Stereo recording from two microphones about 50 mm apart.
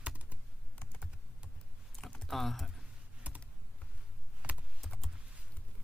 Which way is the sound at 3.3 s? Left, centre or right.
Right.